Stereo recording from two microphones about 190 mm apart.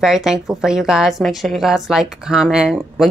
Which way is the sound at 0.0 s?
5° right (ahead or behind).